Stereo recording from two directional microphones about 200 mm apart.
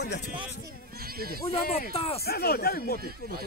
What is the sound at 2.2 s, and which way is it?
Speech, 50° left (ahead or behind).